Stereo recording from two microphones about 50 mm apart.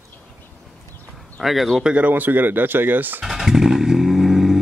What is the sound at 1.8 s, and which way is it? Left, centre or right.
Speech, right.